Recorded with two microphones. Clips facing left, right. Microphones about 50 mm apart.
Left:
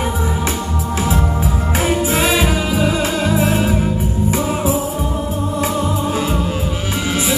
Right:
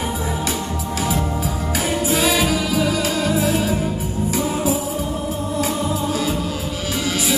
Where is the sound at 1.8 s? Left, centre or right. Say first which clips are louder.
Left 2 dB; left.